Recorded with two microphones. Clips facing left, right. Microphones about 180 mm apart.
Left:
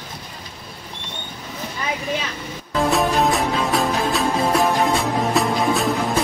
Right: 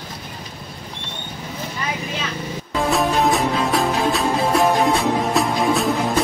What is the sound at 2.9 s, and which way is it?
Music, centre (ahead or behind).